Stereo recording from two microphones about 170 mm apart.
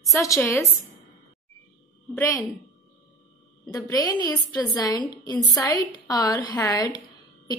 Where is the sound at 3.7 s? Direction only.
20° left (ahead or behind).